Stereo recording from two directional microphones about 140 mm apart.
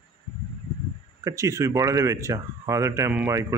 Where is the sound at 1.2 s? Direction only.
25° right (ahead or behind).